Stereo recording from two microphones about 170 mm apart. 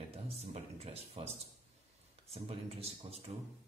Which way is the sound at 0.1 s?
40° right (ahead or behind).